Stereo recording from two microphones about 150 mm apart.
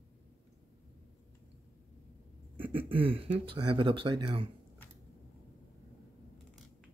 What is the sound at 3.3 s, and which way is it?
Speech, 35° right (ahead or behind).